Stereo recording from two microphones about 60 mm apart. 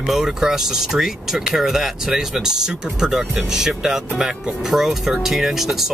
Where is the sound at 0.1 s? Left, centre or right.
Centre.